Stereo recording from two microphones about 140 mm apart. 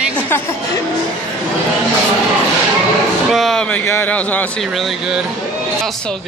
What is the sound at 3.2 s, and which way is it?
Speech, centre (ahead or behind).